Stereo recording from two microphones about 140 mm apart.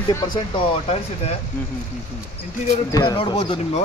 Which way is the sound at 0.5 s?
45° left (ahead or behind).